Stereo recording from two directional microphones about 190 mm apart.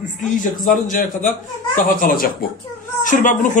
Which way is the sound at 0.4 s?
45° left (ahead or behind).